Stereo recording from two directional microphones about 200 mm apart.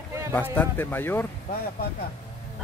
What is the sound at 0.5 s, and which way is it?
Speech, 10° left (ahead or behind).